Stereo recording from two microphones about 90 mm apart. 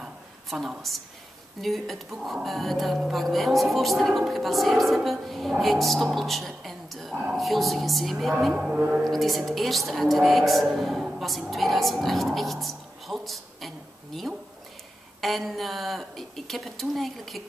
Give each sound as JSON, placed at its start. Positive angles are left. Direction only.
{"t": 0.0, "sound": "a sound", "side_deg": -5}
{"t": 1.6, "sound": "speech", "side_deg": 0}
{"t": 8.6, "sound": "speech", "side_deg": -10}
{"t": 9.0, "sound": "speech", "side_deg": 0}